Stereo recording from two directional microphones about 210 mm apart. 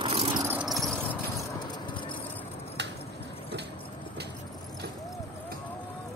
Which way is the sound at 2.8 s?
55° right (ahead or behind).